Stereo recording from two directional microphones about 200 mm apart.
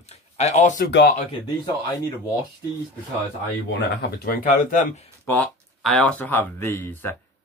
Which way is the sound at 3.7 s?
50° left (ahead or behind).